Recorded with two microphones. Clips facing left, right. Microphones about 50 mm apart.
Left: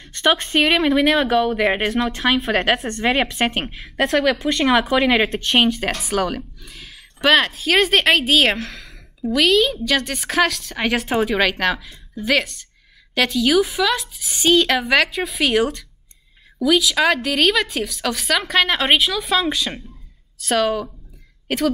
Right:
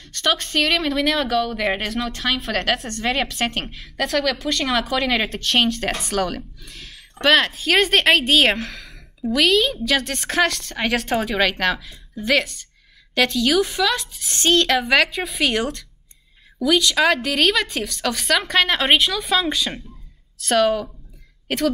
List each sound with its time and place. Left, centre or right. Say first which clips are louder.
0.1 s a woman's voice: left 4 dB; left; by 21.6 s centre